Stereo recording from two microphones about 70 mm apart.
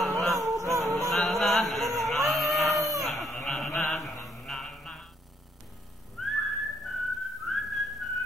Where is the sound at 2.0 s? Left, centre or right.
Centre.